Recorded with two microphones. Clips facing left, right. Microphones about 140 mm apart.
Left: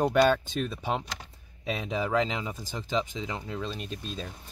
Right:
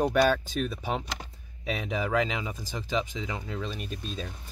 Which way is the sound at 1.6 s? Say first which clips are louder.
Even; 25° left (ahead or behind).